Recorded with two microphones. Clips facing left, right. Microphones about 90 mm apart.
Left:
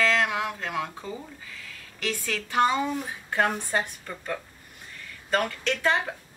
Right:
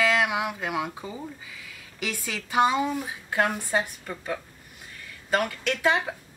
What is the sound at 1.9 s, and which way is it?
A woman's voice, 10° right (ahead or behind).